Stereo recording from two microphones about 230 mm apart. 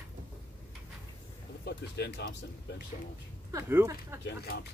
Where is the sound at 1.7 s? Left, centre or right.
Left.